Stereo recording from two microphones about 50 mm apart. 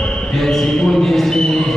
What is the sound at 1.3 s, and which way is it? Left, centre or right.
Music, centre.